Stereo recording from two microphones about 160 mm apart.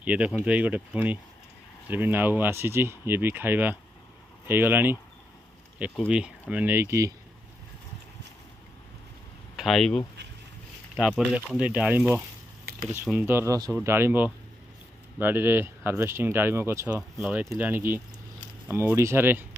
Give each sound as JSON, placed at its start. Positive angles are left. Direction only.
{"t": 0.0, "sound": "speech", "side_deg": -10}
{"t": 6.0, "sound": "speech", "side_deg": -5}
{"t": 9.6, "sound": "speech", "side_deg": 0}
{"t": 11.0, "sound": "speech", "side_deg": -5}